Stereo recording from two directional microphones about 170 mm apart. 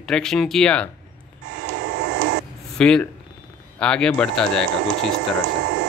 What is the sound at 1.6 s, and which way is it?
Printer, 80° right.